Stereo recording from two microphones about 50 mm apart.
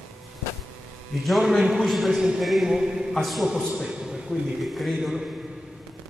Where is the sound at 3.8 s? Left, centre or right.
Centre.